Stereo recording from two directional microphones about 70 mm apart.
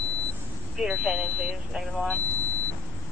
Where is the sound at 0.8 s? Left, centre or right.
Centre.